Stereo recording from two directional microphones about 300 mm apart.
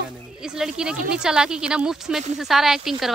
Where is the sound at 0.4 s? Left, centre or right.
Centre.